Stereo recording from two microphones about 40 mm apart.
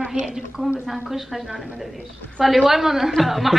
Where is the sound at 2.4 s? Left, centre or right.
Centre.